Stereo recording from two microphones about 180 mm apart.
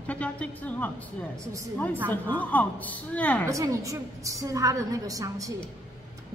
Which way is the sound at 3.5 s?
15° right (ahead or behind).